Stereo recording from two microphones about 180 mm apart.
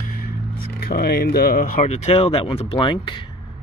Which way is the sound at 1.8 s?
35° left (ahead or behind).